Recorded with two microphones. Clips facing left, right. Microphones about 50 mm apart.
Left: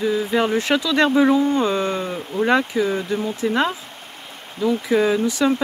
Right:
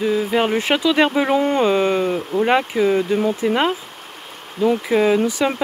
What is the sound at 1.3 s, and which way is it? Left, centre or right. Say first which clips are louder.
Speech: right 1 dB; right.